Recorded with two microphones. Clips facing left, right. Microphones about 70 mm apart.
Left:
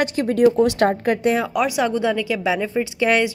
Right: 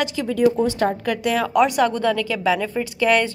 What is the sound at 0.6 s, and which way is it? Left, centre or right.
Speech, left.